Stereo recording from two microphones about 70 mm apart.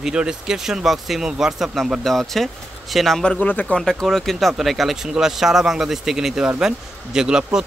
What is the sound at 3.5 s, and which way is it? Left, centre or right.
Speech, left.